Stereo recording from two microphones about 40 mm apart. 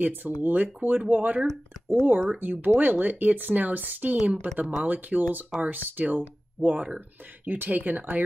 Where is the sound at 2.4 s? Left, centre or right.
Right.